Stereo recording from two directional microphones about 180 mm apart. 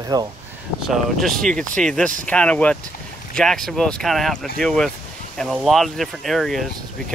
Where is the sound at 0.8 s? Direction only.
Centre (ahead or behind).